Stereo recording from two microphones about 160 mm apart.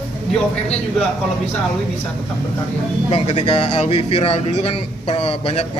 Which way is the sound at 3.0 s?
40° left (ahead or behind).